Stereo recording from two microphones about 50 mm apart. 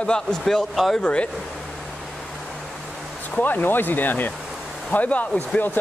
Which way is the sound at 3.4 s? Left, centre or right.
Left.